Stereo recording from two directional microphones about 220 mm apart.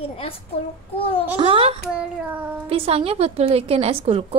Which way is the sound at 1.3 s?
25° right (ahead or behind).